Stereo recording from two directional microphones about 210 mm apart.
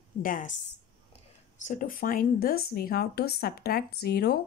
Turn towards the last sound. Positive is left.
turn(degrees=50)  # may be behind; listen again after turning